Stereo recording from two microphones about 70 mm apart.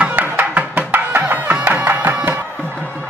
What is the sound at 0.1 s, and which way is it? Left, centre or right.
Music, right.